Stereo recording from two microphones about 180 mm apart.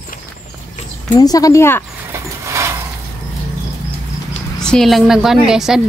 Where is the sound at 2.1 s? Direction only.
15° right (ahead or behind).